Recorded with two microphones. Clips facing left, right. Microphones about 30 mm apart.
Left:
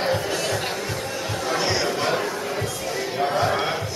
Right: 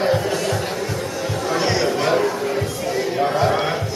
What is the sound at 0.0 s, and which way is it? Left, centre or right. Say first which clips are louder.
Music: right 4 dB; centre.